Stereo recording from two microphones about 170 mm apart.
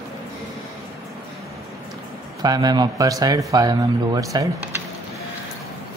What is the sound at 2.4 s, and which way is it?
Speech, 25° right (ahead or behind).